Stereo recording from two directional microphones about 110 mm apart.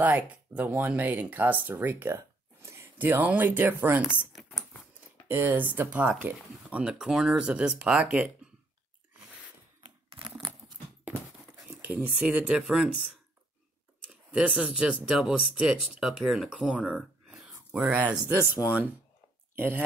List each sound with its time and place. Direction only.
0.0 s speech: 15° right (ahead or behind)
4.4 s a sound: centre (ahead or behind)
5.3 s speech: 15° right (ahead or behind)
9.8 s a sound: 50° right (ahead or behind)
11.6 s speech: 10° right (ahead or behind)
19.5 s speech: 20° right (ahead or behind)